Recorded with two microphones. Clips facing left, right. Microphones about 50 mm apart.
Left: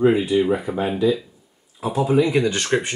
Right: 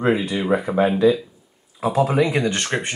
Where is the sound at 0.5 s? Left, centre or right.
Right.